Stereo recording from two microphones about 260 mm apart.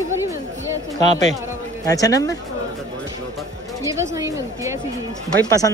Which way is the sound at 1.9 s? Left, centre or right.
Centre.